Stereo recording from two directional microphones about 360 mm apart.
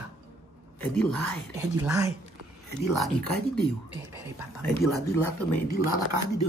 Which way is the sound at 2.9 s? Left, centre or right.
Centre.